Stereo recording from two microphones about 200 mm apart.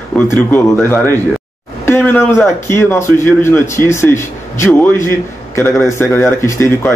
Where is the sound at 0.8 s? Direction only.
10° left (ahead or behind).